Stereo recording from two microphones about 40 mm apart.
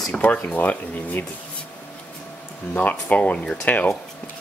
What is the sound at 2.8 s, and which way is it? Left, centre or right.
Speech, left.